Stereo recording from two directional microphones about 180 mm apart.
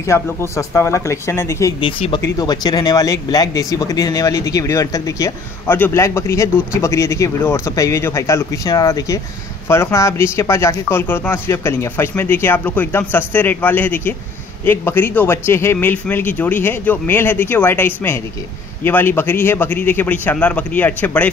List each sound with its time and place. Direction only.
0.0 s speech: 15° left (ahead or behind)
1.8 s speech: 30° left (ahead or behind); by 21.3 s 10° left (ahead or behind)